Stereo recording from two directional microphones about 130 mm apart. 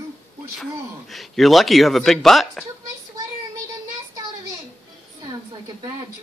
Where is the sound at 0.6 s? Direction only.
Centre (ahead or behind).